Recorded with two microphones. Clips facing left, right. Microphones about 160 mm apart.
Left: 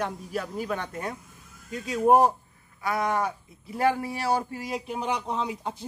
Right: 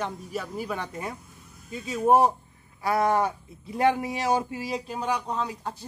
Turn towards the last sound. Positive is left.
turn(degrees=15)  # may be behind; listen again after turning